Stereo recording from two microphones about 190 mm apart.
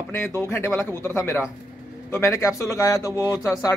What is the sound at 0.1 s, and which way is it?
A man's voice, 15° left (ahead or behind).